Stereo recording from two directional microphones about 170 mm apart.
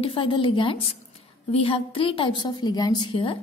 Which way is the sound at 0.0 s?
30° left (ahead or behind).